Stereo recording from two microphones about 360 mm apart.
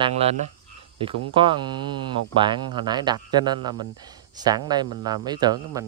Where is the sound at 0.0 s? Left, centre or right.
Centre.